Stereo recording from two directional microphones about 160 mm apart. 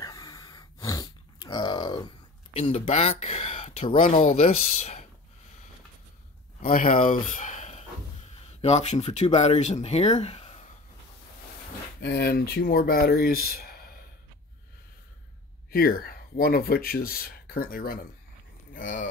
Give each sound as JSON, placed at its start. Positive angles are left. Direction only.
{"t": 0.0, "sound": "grunt", "side_deg": 25}
{"t": 2.5, "sound": "speech", "side_deg": 35}
{"t": 4.2, "sound": "speech", "side_deg": 55}
{"t": 4.5, "sound": "speech", "side_deg": 40}
{"t": 6.6, "sound": "speech", "side_deg": 60}
{"t": 12.0, "sound": "speech", "side_deg": 90}
{"t": 15.7, "sound": "speech", "side_deg": 65}